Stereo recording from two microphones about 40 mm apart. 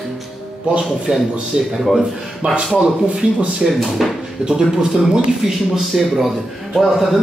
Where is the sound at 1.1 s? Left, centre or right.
Right.